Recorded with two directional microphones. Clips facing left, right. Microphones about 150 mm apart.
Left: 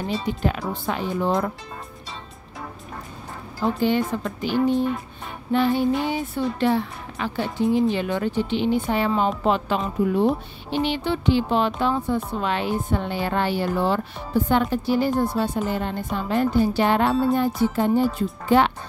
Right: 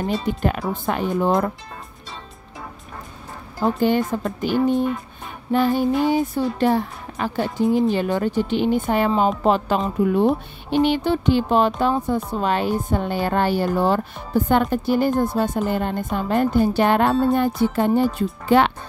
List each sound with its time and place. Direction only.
0.0 s a woman's voice: 50° right (ahead or behind)
3.6 s a woman's voice: 45° right (ahead or behind)
17.6 s music: 60° right (ahead or behind)